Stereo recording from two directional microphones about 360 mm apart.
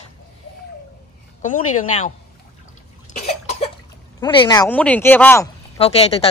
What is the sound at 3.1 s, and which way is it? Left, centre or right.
Cough, centre.